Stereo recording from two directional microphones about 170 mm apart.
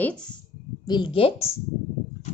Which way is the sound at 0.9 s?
30° left (ahead or behind).